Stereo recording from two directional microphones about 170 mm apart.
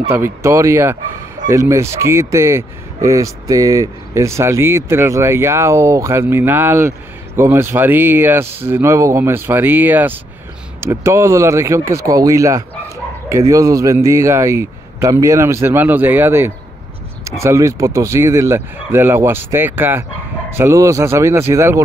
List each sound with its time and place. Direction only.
0.1 s speech: 15° right (ahead or behind)